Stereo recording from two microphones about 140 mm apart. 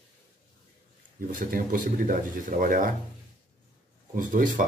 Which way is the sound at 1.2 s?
85° right.